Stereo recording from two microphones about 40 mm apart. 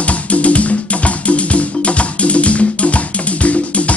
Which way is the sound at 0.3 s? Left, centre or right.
Left.